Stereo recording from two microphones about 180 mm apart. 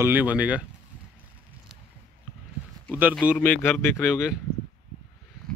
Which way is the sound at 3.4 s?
10° left (ahead or behind).